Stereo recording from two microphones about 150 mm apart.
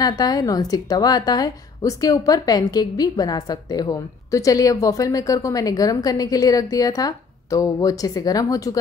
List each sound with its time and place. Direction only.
0.0 s a woman's voice: 25° left (ahead or behind)